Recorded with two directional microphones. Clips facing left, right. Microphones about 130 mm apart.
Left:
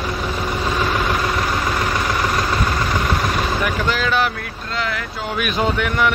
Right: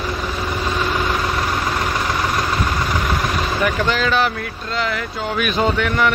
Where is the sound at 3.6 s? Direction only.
5° left (ahead or behind).